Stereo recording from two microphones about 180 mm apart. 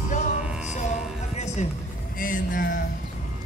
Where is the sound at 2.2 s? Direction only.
50° left (ahead or behind).